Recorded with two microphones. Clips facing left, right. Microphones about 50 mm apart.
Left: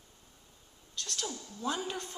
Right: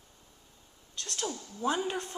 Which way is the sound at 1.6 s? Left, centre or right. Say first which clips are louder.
Right 5 dB; centre.